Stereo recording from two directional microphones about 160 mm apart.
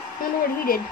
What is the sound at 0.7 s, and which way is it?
Speech, 65° left (ahead or behind).